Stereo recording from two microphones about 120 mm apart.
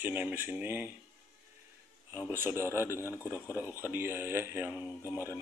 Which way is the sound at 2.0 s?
20° right (ahead or behind).